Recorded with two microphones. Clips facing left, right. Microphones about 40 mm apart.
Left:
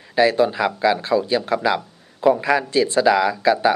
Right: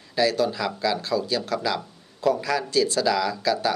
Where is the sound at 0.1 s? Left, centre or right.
Left.